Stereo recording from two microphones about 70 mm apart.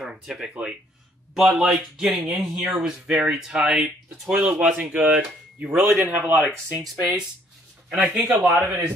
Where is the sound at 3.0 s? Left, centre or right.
Centre.